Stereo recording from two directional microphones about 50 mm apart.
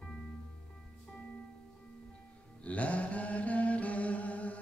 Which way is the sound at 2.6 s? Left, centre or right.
Left.